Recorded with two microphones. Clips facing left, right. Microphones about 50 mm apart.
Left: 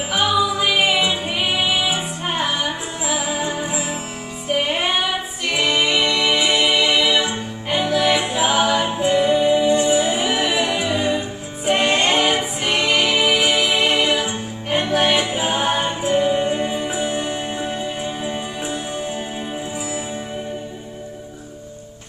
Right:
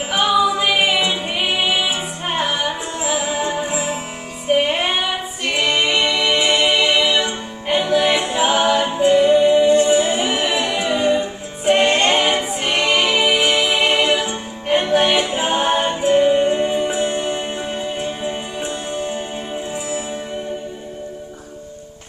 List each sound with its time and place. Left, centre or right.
0.1 s music: centre
3.0 s music: centre
3.5 s music: centre
6.8 s music: centre
7.1 s music: centre
10.9 s music: centre
11.1 s music: centre
12.1 s a capella: centre
12.7 s music: centre
13.7 s music: centre